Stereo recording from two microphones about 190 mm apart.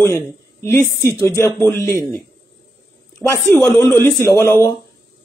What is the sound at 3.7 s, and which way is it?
Speech, 15° left (ahead or behind).